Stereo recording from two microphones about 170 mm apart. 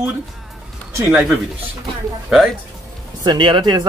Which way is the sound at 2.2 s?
Centre (ahead or behind).